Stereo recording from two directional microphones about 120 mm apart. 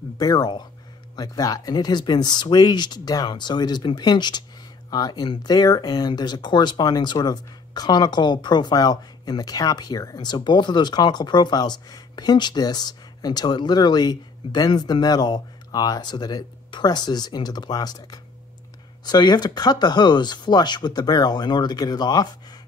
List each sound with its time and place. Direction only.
0.2 s speech: 35° left (ahead or behind)